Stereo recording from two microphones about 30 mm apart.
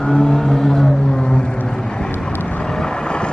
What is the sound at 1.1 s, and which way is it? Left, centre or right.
Vehicle, left.